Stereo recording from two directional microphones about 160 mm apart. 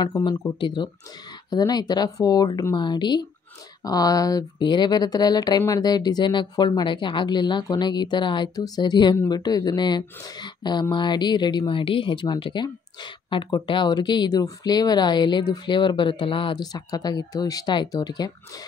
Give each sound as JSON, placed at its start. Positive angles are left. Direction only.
{"t": 0.0, "sound": "speech", "side_deg": 25}